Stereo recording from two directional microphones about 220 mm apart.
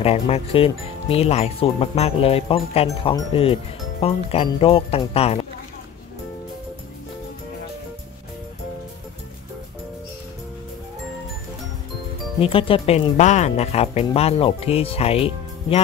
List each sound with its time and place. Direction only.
0.0 s speech: 25° left (ahead or behind)
12.4 s speech: 25° left (ahead or behind)